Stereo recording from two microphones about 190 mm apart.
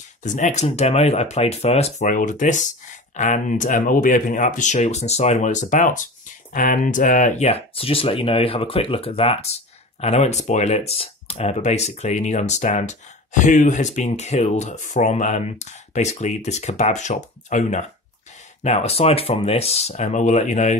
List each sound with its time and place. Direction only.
0.2 s speech: 40° left (ahead or behind)